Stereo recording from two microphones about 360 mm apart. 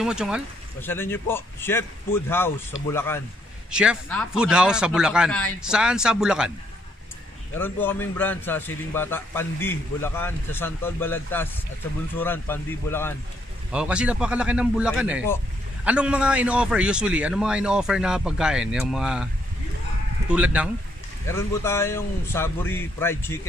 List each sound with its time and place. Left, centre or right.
0.0 s a man's voice: centre
7.5 s a man's voice: centre
20.2 s a man's voice: centre
21.3 s a man's voice: centre